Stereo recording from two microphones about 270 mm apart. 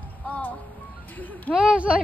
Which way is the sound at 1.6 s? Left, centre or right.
Centre.